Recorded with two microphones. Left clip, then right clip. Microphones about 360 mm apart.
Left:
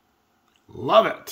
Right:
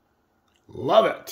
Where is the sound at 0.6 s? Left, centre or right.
Centre.